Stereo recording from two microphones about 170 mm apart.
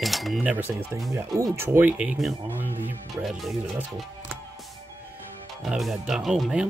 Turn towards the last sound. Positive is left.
turn(degrees=0)  # may be behind; listen again after turning